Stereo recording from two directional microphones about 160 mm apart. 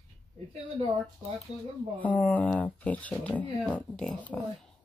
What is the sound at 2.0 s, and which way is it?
Speech, 10° left (ahead or behind).